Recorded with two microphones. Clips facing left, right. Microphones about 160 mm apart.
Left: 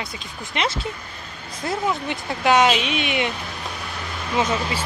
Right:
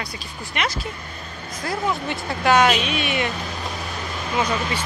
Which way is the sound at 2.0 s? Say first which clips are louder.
Right 1 dB; 20° left (ahead or behind).